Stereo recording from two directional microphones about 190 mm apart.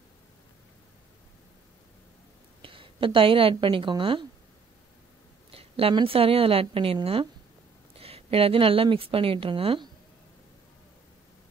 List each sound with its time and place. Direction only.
2.6 s a woman's voice: 25° right (ahead or behind)
5.5 s a woman's voice: 30° right (ahead or behind)